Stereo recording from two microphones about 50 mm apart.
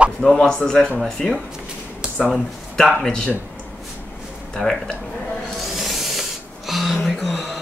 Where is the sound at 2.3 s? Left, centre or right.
Centre.